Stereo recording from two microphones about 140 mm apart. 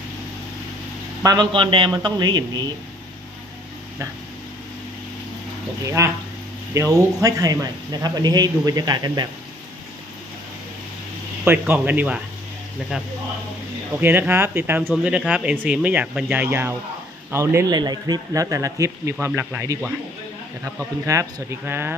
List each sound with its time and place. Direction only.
1.2 s a man's voice: 30° right (ahead or behind)
6.0 s speech: 20° right (ahead or behind)
11.4 s speech: 15° right (ahead or behind)
13.9 s speech: 15° right (ahead or behind)
21.0 s speech: 20° right (ahead or behind)